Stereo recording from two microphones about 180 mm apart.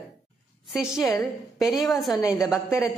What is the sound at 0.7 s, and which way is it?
A woman's voice, 5° right (ahead or behind).